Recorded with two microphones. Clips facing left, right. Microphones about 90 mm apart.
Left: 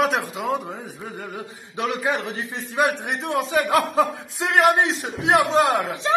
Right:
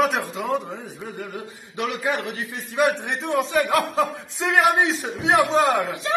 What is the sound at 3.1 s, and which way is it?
A man's voice, centre (ahead or behind).